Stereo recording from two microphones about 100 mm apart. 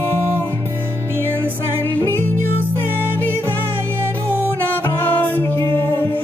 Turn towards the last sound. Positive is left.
turn(degrees=20)  # may be behind; listen again after turning